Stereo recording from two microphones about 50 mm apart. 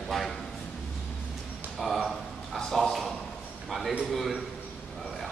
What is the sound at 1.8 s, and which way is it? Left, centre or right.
A man's voice, centre.